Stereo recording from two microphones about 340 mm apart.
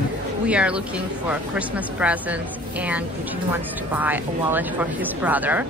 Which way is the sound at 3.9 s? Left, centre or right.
Centre.